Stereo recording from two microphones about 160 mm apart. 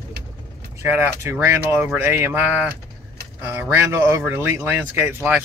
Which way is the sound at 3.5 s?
15° right (ahead or behind).